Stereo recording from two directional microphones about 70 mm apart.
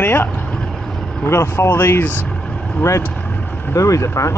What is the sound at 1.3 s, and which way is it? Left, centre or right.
Speech, left.